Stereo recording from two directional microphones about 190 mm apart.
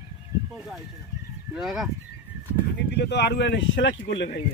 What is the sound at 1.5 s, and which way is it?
Speech, centre (ahead or behind).